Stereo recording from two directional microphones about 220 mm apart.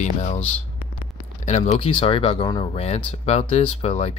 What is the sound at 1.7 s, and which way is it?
Speech, 25° left (ahead or behind).